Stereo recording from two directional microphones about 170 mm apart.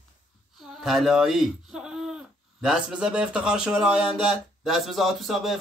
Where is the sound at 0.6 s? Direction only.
Centre (ahead or behind).